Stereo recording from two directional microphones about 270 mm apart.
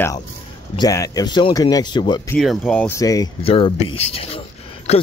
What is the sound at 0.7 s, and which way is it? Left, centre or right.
Speech, centre.